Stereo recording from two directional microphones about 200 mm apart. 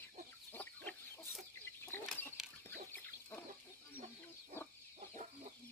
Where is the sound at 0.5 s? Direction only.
10° left (ahead or behind).